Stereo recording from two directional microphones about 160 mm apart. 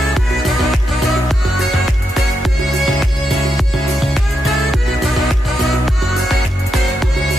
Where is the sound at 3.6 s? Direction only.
Centre (ahead or behind).